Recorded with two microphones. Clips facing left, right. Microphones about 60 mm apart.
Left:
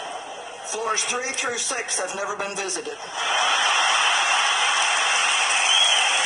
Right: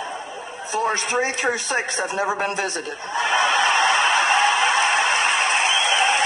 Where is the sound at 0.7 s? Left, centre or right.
Right.